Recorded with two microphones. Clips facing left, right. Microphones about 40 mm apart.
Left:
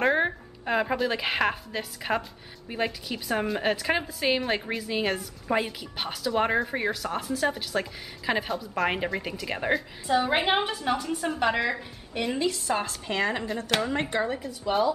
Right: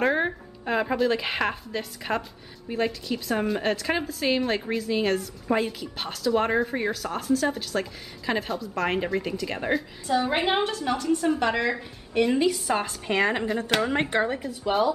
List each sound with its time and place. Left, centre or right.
0.0 s a woman's voice: centre
12.4 s a woman's voice: centre
13.7 s speech: centre